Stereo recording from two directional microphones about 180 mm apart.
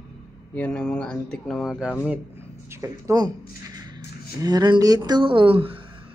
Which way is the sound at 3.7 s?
20° right (ahead or behind).